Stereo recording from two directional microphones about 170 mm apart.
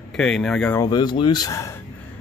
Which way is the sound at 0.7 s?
20° left (ahead or behind).